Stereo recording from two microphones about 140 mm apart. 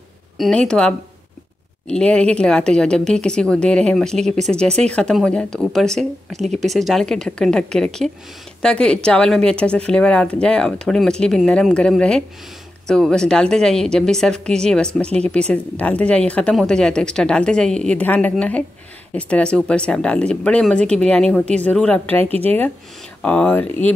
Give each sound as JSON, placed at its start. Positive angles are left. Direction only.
{"t": 0.4, "sound": "a woman's voice", "side_deg": 5}
{"t": 22.3, "sound": "speech", "side_deg": -45}
{"t": 23.2, "sound": "a woman's voice", "side_deg": 10}